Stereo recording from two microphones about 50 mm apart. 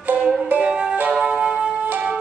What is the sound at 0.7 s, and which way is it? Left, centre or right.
Music, centre.